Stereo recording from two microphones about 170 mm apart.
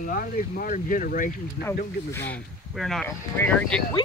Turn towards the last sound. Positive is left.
turn(degrees=10)  # may be behind; listen again after turning